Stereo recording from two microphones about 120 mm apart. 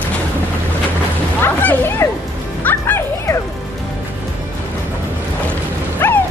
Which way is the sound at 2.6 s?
20° left (ahead or behind).